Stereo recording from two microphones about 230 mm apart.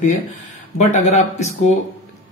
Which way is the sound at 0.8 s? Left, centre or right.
Left.